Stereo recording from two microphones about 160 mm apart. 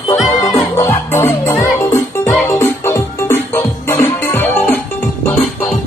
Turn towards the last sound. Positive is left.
turn(degrees=10)  # may be behind; listen again after turning